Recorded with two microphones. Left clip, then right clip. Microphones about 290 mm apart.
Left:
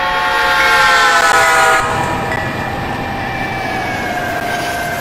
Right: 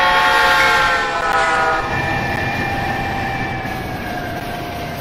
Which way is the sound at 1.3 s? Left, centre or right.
Left.